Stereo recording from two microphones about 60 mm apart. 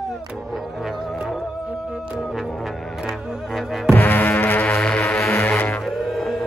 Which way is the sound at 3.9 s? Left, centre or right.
Left.